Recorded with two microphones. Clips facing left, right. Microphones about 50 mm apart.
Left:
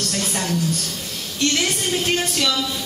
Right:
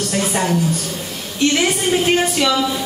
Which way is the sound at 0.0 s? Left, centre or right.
Centre.